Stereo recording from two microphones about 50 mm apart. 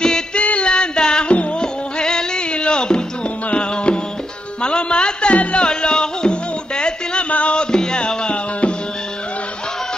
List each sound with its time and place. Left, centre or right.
0.0 s music: centre